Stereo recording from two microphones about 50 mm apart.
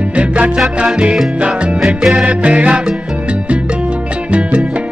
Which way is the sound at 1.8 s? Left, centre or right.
Centre.